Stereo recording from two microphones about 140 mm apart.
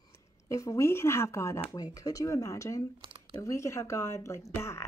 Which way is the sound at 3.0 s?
40° right (ahead or behind).